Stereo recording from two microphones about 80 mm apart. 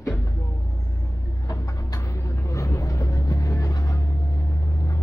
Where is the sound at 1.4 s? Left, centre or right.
Left.